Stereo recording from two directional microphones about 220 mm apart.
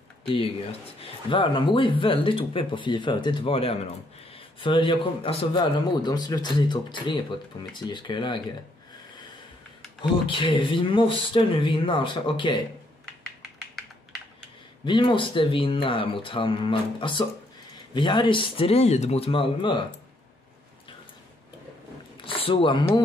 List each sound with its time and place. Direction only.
0.3 s a man's voice: 25° left (ahead or behind)
10.2 s a man's voice: 20° left (ahead or behind)
14.9 s a man's voice: 25° left (ahead or behind)
22.2 s speech: 25° left (ahead or behind)